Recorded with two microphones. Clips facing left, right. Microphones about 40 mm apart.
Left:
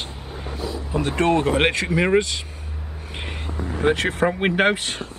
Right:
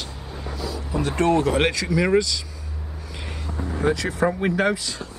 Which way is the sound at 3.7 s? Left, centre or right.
Left.